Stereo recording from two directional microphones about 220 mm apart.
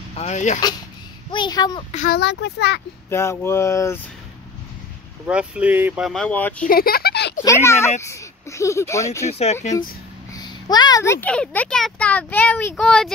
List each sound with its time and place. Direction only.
0.1 s speech: 30° left (ahead or behind)
1.3 s speech: 20° left (ahead or behind)
1.9 s speech: 35° left (ahead or behind)
2.1 s a child's voice: 50° left (ahead or behind)
3.1 s speech: 10° left (ahead or behind)
5.2 s speech: 5° right (ahead or behind)
6.6 s a sound: 40° left (ahead or behind)
7.4 s speech: 10° left (ahead or behind)
9.3 s speech: 30° left (ahead or behind)
10.3 s speech: 20° left (ahead or behind); by 13.1 s centre (ahead or behind)